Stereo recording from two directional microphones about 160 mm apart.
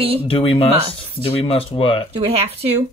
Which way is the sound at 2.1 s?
40° right (ahead or behind).